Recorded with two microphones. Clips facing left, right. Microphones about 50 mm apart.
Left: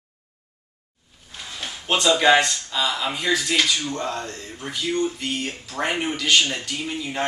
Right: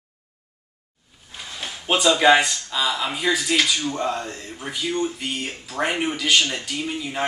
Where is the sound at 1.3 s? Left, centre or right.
Centre.